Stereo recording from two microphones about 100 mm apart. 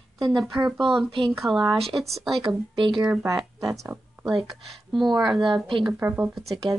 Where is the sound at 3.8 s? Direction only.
25° right (ahead or behind).